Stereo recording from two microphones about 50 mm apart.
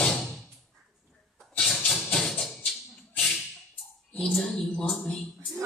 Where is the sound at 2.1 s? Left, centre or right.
Centre.